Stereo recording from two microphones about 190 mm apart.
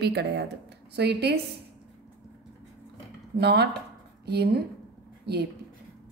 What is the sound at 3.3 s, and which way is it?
A woman's voice, 60° right (ahead or behind).